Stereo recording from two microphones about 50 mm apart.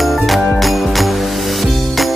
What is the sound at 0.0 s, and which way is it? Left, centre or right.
Music, centre.